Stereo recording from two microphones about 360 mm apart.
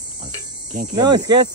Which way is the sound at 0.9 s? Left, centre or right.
Centre.